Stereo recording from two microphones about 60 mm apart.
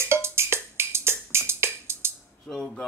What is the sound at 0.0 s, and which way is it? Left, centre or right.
Wood block, right.